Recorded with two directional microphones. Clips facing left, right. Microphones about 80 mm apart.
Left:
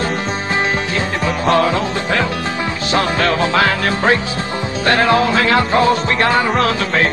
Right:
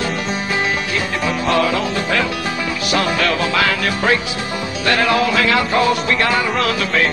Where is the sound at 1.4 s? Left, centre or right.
Left.